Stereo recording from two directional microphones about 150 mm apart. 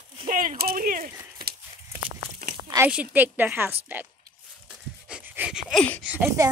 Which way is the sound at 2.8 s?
10° right (ahead or behind).